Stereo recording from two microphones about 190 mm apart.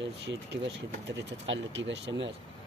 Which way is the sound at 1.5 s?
75° right (ahead or behind).